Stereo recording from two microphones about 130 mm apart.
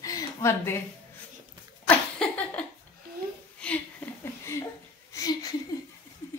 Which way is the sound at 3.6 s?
10° left (ahead or behind).